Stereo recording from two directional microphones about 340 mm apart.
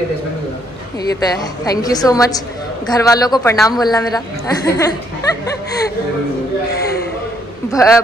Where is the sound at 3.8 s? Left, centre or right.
Centre.